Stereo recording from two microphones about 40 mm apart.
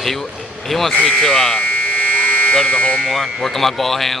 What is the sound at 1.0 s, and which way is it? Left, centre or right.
Buzzer, centre.